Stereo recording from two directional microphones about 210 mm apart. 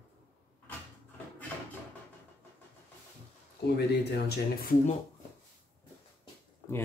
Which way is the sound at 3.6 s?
50° left (ahead or behind).